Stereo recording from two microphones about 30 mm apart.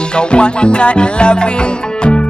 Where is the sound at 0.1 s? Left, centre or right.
Left.